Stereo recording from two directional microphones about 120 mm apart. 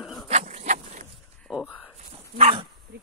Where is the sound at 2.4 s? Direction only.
50° right (ahead or behind).